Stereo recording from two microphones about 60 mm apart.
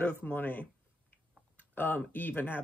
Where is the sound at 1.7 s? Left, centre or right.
Left.